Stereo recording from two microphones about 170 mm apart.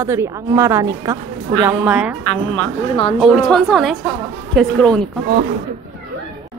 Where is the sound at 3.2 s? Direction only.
Centre (ahead or behind).